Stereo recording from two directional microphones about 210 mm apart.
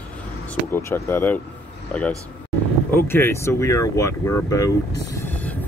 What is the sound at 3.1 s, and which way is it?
Speech, 10° left (ahead or behind).